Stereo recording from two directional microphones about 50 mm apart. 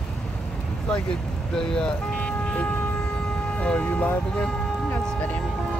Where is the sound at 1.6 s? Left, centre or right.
Centre.